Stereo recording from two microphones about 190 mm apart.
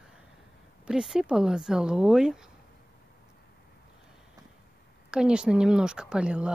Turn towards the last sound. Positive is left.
turn(degrees=-5)  # may be behind; listen again after turning